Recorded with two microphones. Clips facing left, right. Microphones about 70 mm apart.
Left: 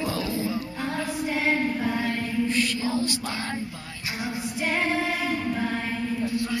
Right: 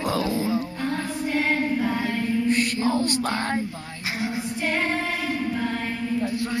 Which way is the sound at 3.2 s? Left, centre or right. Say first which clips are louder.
Right 6 dB; right.